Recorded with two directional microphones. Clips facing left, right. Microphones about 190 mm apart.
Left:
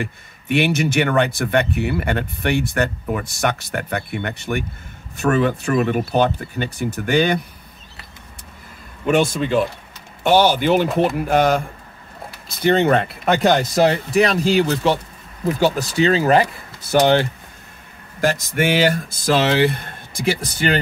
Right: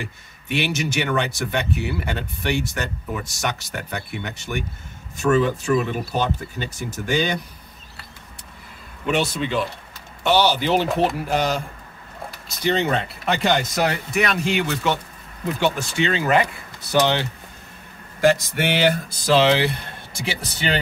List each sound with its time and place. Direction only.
0.0 s speech: 55° left (ahead or behind)
9.0 s speech: 50° left (ahead or behind)
16.9 s speech: 50° left (ahead or behind)
19.2 s speech: 50° left (ahead or behind)